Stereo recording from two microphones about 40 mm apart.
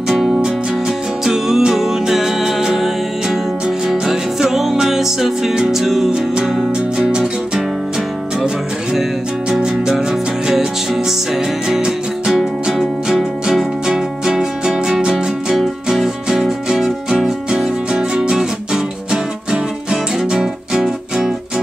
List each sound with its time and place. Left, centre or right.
0.8 s music: centre
9.5 s music: centre
19.5 s music: centre